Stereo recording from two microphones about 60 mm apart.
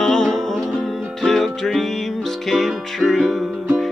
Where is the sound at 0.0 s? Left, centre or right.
Centre.